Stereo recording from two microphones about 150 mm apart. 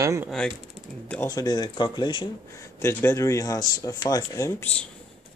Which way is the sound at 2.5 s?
15° left (ahead or behind).